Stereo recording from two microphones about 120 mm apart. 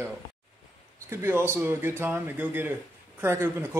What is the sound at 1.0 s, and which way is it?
A man's voice, 20° right (ahead or behind).